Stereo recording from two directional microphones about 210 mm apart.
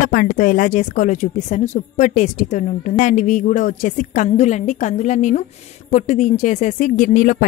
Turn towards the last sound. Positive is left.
turn(degrees=40)  # may be behind; listen again after turning